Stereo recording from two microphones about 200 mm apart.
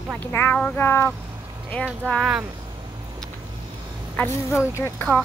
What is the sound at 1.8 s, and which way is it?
Speech, centre (ahead or behind).